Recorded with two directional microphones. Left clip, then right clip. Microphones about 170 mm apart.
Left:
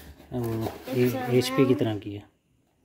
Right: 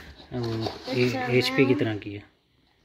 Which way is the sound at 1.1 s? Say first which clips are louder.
Right 2 dB; 20° left (ahead or behind).